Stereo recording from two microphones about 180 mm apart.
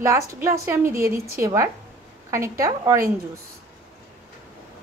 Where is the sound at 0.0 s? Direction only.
15° right (ahead or behind).